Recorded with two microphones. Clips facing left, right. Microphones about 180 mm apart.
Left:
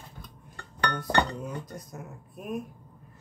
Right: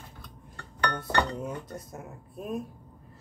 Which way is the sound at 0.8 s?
25° right (ahead or behind).